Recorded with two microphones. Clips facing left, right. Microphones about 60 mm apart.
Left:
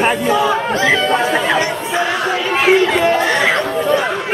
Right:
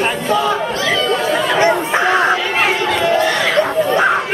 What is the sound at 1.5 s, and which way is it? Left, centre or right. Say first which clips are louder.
Chatter: right 3 dB; right.